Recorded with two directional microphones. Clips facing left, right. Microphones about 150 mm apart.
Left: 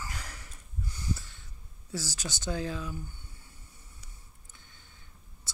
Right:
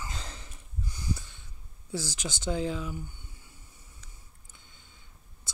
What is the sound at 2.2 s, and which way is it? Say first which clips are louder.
Speech: right 3 dB; 20° right (ahead or behind).